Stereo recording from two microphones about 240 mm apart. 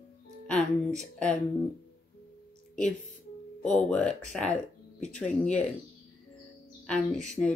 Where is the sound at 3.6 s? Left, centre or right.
Centre.